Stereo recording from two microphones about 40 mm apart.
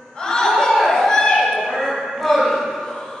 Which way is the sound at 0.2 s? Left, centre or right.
Centre.